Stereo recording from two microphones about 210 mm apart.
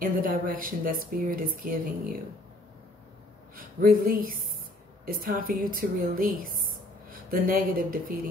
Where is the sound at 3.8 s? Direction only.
40° right (ahead or behind).